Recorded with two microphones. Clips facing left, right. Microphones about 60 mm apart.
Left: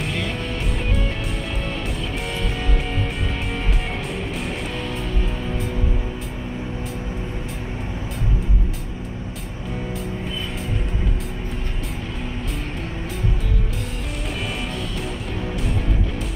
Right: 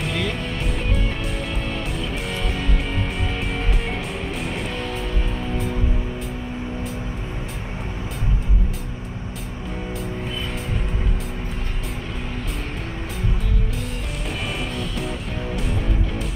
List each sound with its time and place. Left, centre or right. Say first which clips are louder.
0.0 s music: right 1 dB; centre